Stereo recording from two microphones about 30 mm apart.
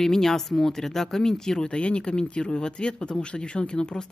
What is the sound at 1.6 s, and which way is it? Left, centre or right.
Speech, left.